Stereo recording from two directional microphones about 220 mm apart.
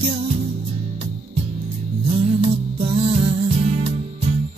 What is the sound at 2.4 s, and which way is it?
Music, 25° right (ahead or behind).